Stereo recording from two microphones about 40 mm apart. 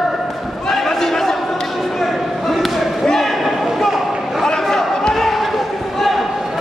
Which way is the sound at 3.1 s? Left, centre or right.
Centre.